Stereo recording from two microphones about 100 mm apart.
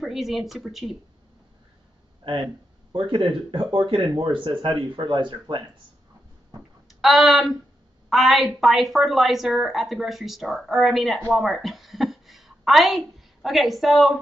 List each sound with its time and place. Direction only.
0.0 s a woman's voice: centre (ahead or behind)
2.9 s speech: 55° right (ahead or behind)
7.0 s a woman's voice: centre (ahead or behind)